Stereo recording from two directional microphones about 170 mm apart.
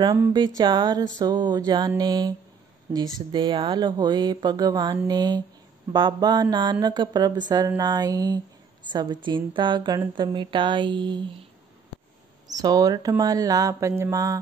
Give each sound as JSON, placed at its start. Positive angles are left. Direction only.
{"t": 0.6, "sound": "speech", "side_deg": -25}
{"t": 12.5, "sound": "speech", "side_deg": -20}